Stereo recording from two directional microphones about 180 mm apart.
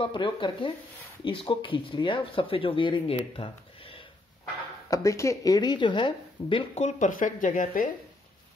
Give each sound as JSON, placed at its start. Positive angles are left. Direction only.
{"t": 0.0, "sound": "speech", "side_deg": 25}
{"t": 4.8, "sound": "speech", "side_deg": 20}